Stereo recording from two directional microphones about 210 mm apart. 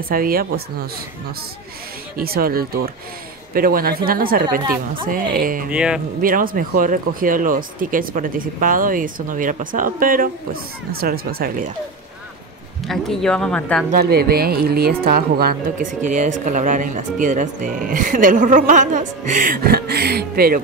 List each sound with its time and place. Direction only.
0.1 s speech: 45° right (ahead or behind)
2.1 s a woman's voice: 45° right (ahead or behind)
5.7 s speech: 5° right (ahead or behind)
6.2 s a woman's voice: 40° right (ahead or behind)
12.8 s speech: centre (ahead or behind)
13.9 s a woman's voice: 50° right (ahead or behind)